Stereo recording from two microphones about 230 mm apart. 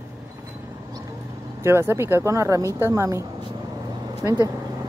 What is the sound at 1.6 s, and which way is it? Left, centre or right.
Speech, centre.